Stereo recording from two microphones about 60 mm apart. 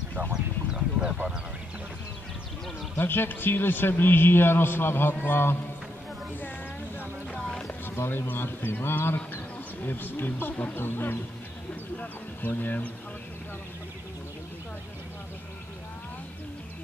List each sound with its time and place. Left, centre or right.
0.3 s a sound: centre
3.0 s a man's voice: left
7.4 s a sound: centre
7.8 s a man's voice: left
10.5 s speech: left
10.8 s a man's voice: left